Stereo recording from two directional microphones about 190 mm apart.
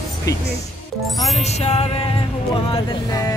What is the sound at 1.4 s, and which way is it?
Music, 35° left (ahead or behind).